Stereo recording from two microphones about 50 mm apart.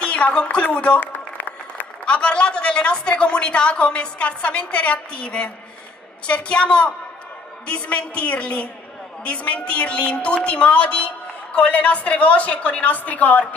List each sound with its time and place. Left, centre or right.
0.0 s speech: left
0.9 s a sound: left
2.0 s a woman's voice: left